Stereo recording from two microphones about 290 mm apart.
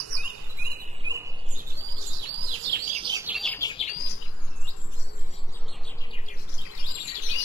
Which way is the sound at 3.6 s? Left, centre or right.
Left.